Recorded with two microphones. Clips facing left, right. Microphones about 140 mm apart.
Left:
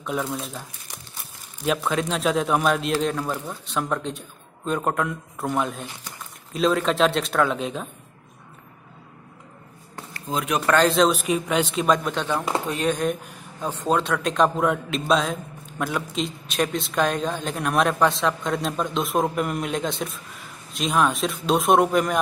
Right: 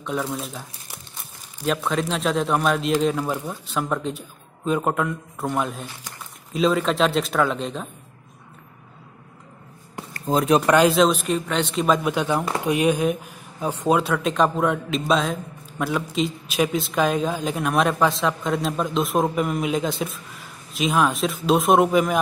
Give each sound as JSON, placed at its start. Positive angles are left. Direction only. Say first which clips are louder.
{"t": 0.0, "sound": "speech", "louder": "right 1 dB", "side_deg": 0}
{"t": 3.2, "sound": "speech", "louder": "right 2 dB", "side_deg": -10}
{"t": 10.1, "sound": "speech", "louder": "right 7 dB", "side_deg": -40}
{"t": 10.9, "sound": "speech", "louder": "right 1 dB", "side_deg": 0}